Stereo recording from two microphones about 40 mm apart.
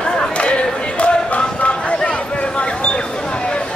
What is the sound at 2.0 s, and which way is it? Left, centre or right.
Basketball bounce, left.